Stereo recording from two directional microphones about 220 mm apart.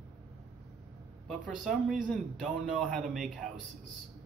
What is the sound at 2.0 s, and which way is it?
Speech, centre (ahead or behind).